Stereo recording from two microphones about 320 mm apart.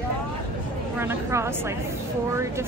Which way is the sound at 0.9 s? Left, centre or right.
Centre.